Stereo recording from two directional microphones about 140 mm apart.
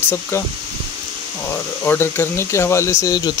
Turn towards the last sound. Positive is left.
turn(degrees=25)  # may be behind; listen again after turning